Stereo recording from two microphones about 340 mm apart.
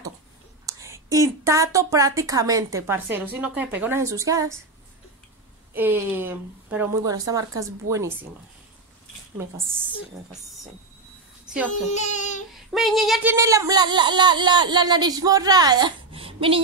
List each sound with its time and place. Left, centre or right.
0.7 s speech: centre
5.7 s speech: centre
9.4 s speech: centre
11.4 s a child's voice: centre
11.9 s speech: left
12.7 s speech: centre